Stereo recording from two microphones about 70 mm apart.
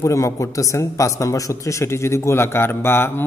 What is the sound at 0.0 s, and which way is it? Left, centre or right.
Speech, left.